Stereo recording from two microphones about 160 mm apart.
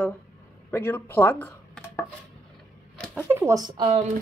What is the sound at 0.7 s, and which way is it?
Speech, 15° left (ahead or behind).